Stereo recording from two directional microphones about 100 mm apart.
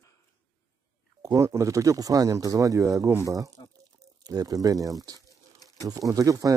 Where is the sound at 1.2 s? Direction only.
30° right (ahead or behind).